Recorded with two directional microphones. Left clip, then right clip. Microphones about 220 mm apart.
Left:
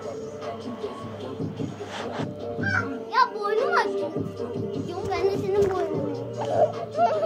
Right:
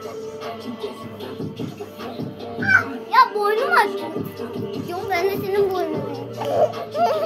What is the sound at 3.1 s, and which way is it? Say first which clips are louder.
Children playing: right 6 dB; 5° right (ahead or behind).